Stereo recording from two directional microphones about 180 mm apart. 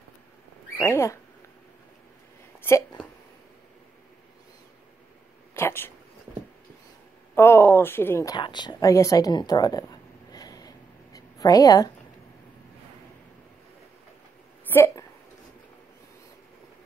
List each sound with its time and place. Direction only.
0.7 s speech: 15° left (ahead or behind)
2.6 s speech: 15° left (ahead or behind)
5.5 s speech: 15° left (ahead or behind)
7.3 s speech: 15° left (ahead or behind)
8.4 s a woman's voice: 25° left (ahead or behind)
14.7 s a sound: 15° left (ahead or behind)